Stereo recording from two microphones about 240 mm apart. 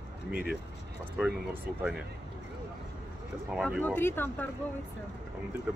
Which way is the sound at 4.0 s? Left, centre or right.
Centre.